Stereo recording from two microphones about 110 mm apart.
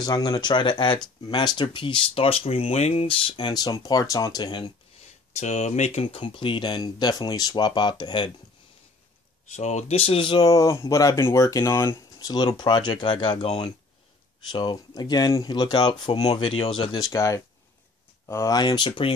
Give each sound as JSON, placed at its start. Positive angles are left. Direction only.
{"t": 0.0, "sound": "speech", "side_deg": 35}
{"t": 5.4, "sound": "speech", "side_deg": 90}
{"t": 6.2, "sound": "speech", "side_deg": 50}
{"t": 9.5, "sound": "speech", "side_deg": 90}
{"t": 10.5, "sound": "speech", "side_deg": 30}
{"t": 12.3, "sound": "speech", "side_deg": 40}
{"t": 14.5, "sound": "speech", "side_deg": 45}
{"t": 16.2, "sound": "speech", "side_deg": 65}
{"t": 17.1, "sound": "speech", "side_deg": 25}